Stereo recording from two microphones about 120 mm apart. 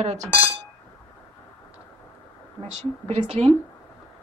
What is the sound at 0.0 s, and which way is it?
Speech, 65° right (ahead or behind).